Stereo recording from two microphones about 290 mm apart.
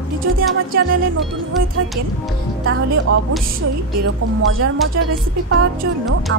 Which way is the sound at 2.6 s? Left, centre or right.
Right.